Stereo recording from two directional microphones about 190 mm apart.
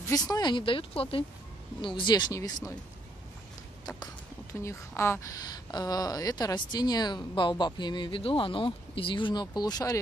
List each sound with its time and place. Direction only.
0.1 s speech: 20° left (ahead or behind)
4.6 s speech: 15° left (ahead or behind)